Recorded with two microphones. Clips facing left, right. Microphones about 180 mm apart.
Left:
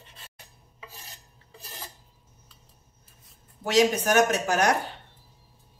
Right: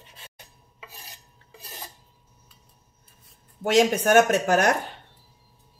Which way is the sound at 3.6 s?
55° right (ahead or behind).